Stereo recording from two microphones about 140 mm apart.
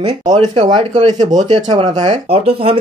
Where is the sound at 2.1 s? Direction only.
45° right (ahead or behind).